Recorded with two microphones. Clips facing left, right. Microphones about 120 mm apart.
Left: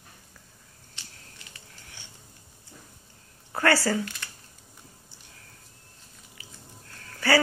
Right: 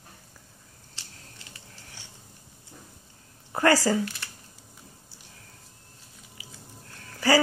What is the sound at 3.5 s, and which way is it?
Speech, 20° right (ahead or behind).